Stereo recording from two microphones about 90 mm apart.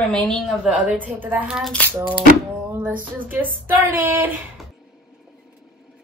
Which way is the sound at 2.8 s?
20° right (ahead or behind).